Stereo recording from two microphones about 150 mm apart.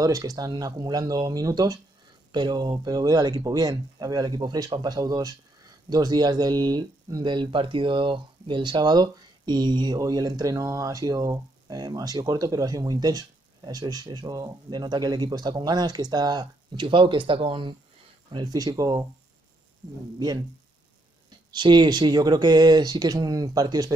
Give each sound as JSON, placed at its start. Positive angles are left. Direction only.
{"t": 0.0, "sound": "speech", "side_deg": -25}
{"t": 21.5, "sound": "speech", "side_deg": -30}